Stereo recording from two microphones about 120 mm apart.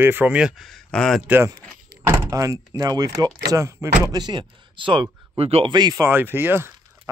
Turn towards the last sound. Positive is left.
turn(degrees=-20)  # may be behind; listen again after turning